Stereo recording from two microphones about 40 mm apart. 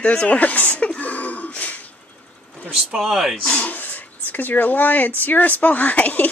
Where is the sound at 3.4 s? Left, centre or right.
Left.